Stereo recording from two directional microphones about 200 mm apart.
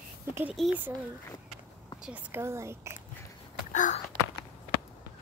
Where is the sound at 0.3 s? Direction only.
10° right (ahead or behind).